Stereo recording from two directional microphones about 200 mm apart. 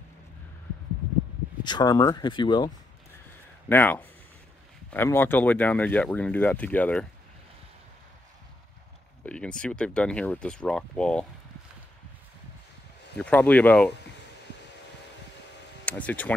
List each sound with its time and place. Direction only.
1.6 s speech: 20° left (ahead or behind)
3.3 s a sound: 10° left (ahead or behind)
4.9 s speech: 10° left (ahead or behind)
9.2 s speech: 5° left (ahead or behind)
13.2 s speech: 10° left (ahead or behind)
15.8 s speech: 10° left (ahead or behind)